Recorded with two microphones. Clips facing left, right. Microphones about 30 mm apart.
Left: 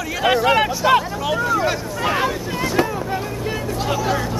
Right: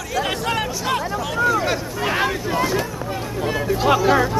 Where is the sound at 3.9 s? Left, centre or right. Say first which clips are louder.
Right 6 dB; right.